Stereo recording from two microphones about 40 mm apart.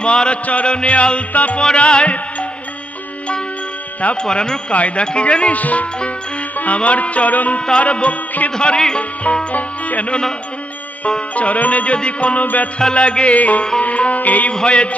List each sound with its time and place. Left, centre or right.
0.0 s music: left
1.6 s music: left
4.2 s music: left
4.7 s music: left
8.5 s music: centre
9.2 s music: left
13.4 s music: left
14.5 s music: left